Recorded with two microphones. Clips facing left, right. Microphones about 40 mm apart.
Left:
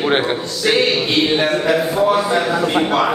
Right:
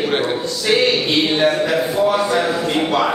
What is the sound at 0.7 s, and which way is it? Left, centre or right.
Speech, centre.